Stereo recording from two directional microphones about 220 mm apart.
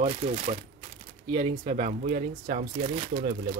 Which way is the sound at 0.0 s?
30° right (ahead or behind).